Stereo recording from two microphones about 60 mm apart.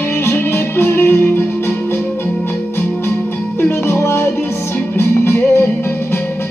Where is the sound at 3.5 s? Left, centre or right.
Left.